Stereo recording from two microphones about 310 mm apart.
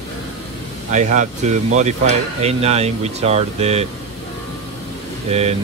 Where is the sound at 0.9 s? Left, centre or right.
Right.